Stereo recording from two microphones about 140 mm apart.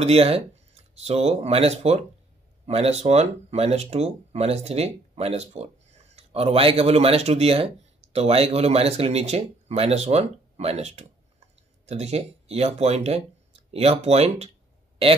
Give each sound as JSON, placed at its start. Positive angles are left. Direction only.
{"t": 0.0, "sound": "speech", "side_deg": -45}